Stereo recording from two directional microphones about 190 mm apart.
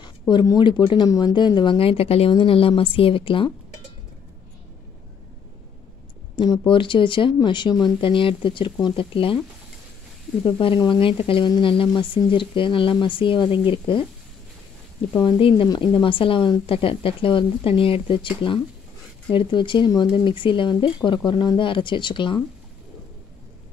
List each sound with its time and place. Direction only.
0.3 s speech: 25° left (ahead or behind)
6.3 s speech: 25° left (ahead or behind)
10.4 s speech: 25° left (ahead or behind)
15.1 s speech: 25° left (ahead or behind)